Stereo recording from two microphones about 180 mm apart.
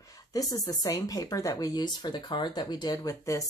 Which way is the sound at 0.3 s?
20° left (ahead or behind).